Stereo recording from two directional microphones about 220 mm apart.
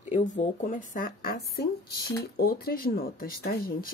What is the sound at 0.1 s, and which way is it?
Speech, 35° left (ahead or behind).